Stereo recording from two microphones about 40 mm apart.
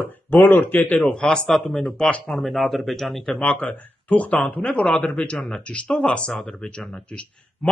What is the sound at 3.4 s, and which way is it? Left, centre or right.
Speech, left.